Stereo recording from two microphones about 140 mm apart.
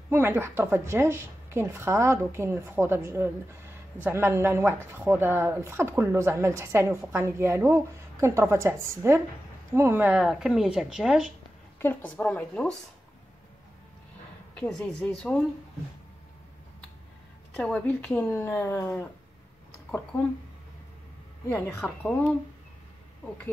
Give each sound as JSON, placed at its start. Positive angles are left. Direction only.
{"t": 0.1, "sound": "a woman's voice", "side_deg": -15}
{"t": 11.8, "sound": "speech", "side_deg": 10}
{"t": 14.5, "sound": "speech", "side_deg": 10}
{"t": 17.6, "sound": "speech", "side_deg": 10}
{"t": 21.5, "sound": "speech", "side_deg": 15}